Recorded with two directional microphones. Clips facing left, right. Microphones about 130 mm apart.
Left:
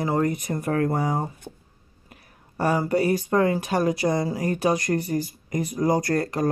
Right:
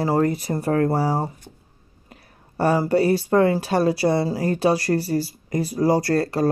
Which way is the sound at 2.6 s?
30° right (ahead or behind).